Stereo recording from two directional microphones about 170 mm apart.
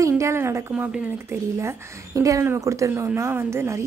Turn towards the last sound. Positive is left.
turn(degrees=-15)  # may be behind; listen again after turning